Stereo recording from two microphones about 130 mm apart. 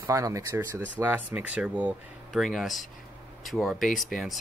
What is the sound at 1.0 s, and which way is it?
Speech, 15° right (ahead or behind).